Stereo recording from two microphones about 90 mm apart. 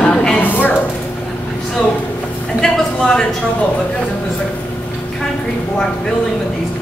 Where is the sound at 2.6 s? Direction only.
5° left (ahead or behind).